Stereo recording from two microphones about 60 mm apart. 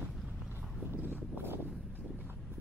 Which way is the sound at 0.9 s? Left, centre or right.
Right.